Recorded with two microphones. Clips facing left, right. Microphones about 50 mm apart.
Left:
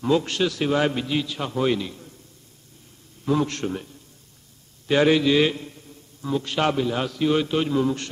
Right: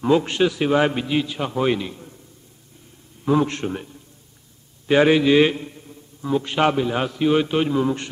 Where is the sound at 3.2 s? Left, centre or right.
Centre.